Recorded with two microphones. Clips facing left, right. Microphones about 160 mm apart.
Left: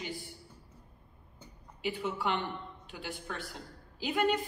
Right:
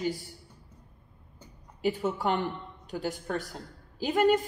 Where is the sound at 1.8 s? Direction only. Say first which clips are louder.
Right 6 dB; 40° right (ahead or behind).